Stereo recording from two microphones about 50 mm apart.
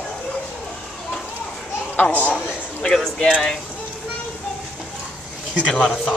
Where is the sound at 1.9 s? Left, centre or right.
Left.